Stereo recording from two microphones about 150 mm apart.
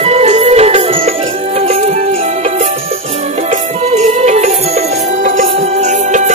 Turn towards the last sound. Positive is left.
turn(degrees=-50)  # may be behind; listen again after turning